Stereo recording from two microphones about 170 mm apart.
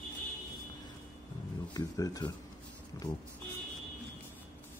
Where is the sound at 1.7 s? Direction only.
25° left (ahead or behind).